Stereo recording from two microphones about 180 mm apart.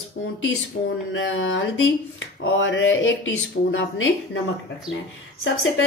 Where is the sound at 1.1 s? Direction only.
90° left.